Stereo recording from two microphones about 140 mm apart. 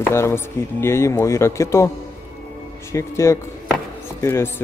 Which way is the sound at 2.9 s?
20° left (ahead or behind).